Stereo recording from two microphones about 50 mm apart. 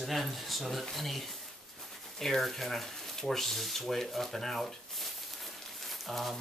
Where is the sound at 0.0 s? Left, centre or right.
Centre.